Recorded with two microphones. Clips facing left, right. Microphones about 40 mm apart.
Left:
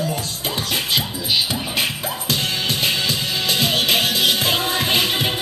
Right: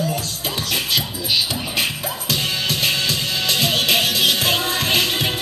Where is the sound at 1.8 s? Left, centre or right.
Centre.